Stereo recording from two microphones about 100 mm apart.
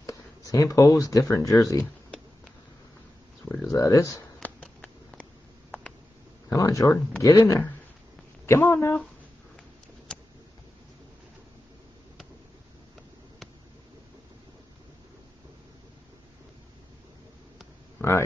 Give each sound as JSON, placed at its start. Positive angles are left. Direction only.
{"t": 0.0, "sound": "speech", "side_deg": 35}
{"t": 3.7, "sound": "speech", "side_deg": 35}
{"t": 4.4, "sound": "a sound", "side_deg": 15}
{"t": 6.5, "sound": "speech", "side_deg": 35}
{"t": 8.5, "sound": "speech", "side_deg": 25}
{"t": 18.0, "sound": "a sound", "side_deg": 25}